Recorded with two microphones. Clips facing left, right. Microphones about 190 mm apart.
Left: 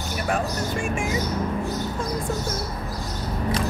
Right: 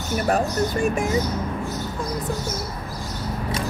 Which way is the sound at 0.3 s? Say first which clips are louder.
Right 4 dB; 40° right (ahead or behind).